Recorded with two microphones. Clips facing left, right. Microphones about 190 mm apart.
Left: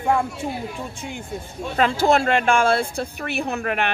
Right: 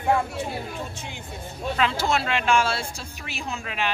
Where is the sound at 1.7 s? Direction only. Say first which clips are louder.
Left 6 dB; 50° left (ahead or behind).